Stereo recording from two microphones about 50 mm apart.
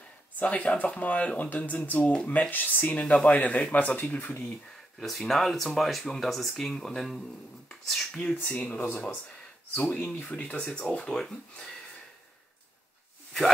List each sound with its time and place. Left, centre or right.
0.4 s a man's voice: left
5.0 s speech: centre
8.2 s a man's voice: left
9.8 s speech: left
10.6 s speech: centre